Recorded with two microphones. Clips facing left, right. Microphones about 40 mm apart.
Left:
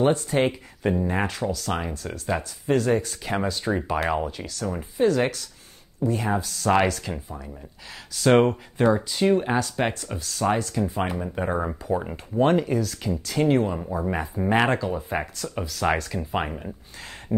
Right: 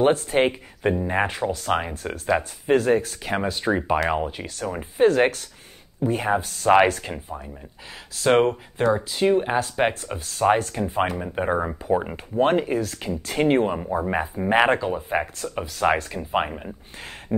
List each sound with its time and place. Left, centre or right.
0.0 s speech: right
3.0 s speech: centre
4.7 s speech: right
8.2 s speech: centre
9.6 s speech: right
11.3 s speech: centre
13.7 s speech: centre
17.3 s a sound: right